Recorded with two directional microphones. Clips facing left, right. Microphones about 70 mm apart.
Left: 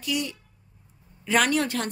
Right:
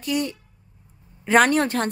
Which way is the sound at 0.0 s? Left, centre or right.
Right.